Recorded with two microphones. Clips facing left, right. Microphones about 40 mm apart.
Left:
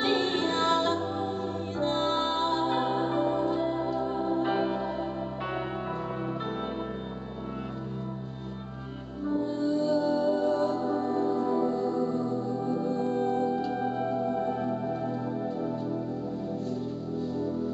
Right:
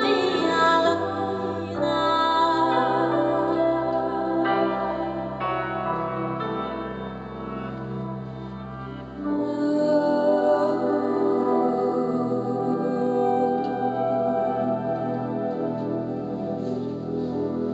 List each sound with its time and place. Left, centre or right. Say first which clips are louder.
0.0 s music: right 5 dB; centre
9.4 s music: right 6 dB; centre